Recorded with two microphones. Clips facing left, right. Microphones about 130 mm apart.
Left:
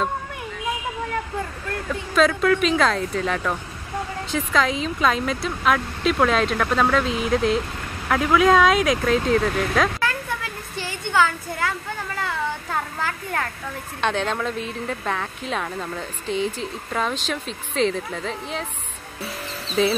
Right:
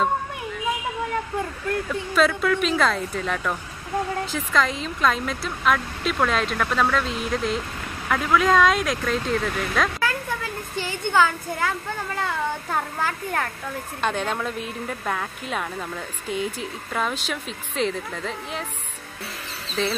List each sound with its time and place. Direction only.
1.9 s a woman's voice: centre (ahead or behind)
11.1 s speech: 15° right (ahead or behind)
12.7 s a woman's voice: 15° right (ahead or behind)
19.8 s a woman's voice: 5° left (ahead or behind)